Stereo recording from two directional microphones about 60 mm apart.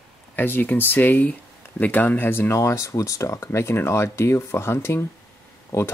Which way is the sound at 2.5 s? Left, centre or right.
Left.